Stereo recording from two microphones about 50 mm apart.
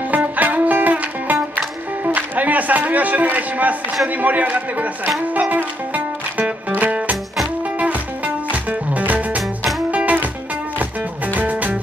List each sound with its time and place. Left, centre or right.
0.1 s music: right
4.2 s a man's voice: right
5.3 s music: right
8.5 s music: right
11.3 s music: right